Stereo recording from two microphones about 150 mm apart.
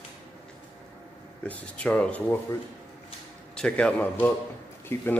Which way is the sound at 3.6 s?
5° left (ahead or behind).